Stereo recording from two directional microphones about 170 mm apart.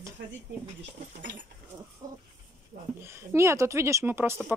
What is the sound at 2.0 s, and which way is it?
Dog, 20° right (ahead or behind).